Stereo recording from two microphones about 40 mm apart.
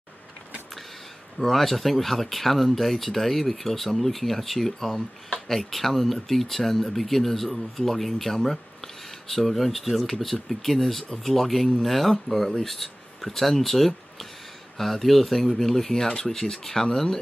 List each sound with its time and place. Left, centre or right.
1.4 s speech: centre